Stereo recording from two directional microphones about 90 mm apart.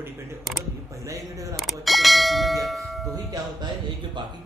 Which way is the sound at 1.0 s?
35° right (ahead or behind).